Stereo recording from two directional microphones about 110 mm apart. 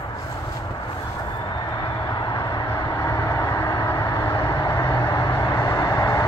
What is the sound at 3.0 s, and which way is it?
Vehicle, 35° left (ahead or behind).